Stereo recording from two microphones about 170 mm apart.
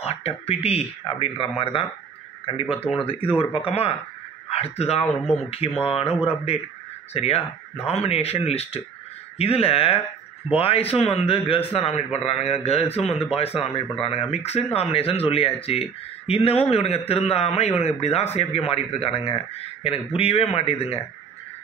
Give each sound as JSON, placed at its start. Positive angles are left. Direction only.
{"t": 0.0, "sound": "a man's voice", "side_deg": 35}